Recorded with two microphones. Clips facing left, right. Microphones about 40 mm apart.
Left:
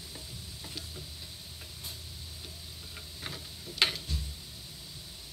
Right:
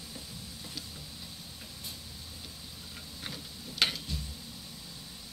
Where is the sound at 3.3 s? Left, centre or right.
Left.